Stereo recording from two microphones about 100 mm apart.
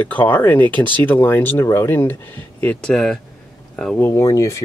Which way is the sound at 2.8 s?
5° left (ahead or behind).